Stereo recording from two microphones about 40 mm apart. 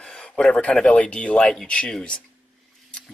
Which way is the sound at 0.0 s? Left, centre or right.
Centre.